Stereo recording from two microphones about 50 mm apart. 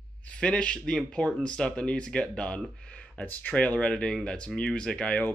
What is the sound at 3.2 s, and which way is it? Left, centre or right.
Speech, left.